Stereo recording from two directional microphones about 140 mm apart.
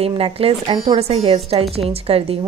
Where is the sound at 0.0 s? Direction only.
45° right (ahead or behind).